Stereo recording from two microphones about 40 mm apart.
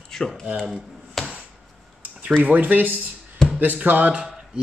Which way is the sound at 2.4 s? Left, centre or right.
Right.